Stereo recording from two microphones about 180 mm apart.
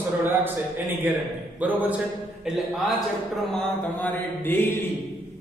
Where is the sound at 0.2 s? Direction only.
10° right (ahead or behind).